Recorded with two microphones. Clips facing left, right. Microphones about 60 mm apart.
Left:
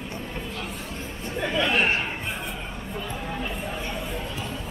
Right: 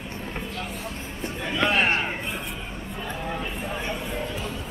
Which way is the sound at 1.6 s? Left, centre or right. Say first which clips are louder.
Right 1 dB; right.